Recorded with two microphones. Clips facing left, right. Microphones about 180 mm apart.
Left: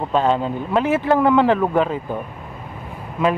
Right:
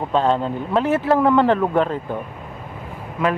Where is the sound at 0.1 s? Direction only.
5° left (ahead or behind).